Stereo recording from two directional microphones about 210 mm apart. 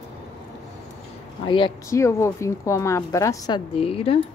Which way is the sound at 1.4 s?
25° left (ahead or behind).